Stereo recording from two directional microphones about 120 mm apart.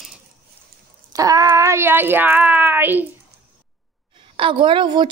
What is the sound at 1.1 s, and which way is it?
Speech, 30° right (ahead or behind).